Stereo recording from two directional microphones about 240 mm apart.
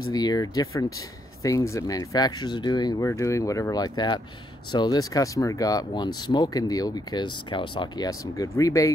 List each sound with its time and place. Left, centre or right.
0.1 s speech: centre